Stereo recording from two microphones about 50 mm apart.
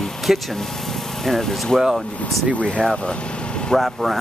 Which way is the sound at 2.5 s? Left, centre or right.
Left.